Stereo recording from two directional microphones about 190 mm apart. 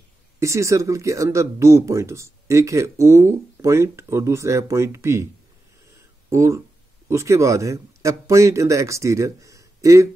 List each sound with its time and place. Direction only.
0.4 s speech: 15° right (ahead or behind)
5.9 s a sound: 15° right (ahead or behind)
7.1 s speech: 15° right (ahead or behind)